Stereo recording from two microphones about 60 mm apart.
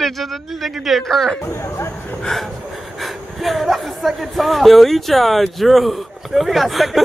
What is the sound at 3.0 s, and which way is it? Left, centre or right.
Speech, centre.